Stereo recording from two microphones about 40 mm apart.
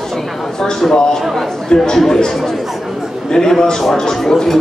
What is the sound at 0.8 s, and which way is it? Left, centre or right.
Speech, centre.